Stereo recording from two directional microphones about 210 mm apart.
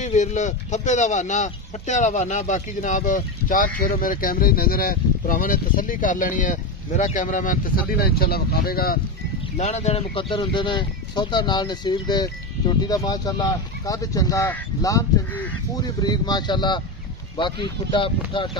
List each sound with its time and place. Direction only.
0.0 s speech: 35° left (ahead or behind)
9.6 s speech: 30° left (ahead or behind)